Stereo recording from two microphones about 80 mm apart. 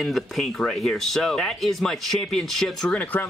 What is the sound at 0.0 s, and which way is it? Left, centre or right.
Speech, centre.